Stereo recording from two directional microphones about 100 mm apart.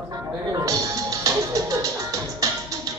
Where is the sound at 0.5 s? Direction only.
35° right (ahead or behind).